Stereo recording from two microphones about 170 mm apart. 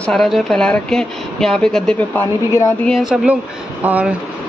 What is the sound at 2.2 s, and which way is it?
Speech, 15° left (ahead or behind).